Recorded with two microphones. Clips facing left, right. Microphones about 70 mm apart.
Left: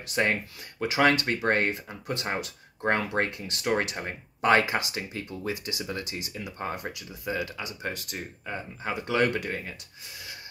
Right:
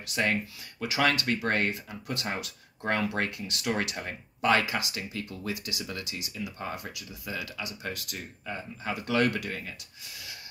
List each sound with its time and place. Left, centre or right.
0.0 s speech: left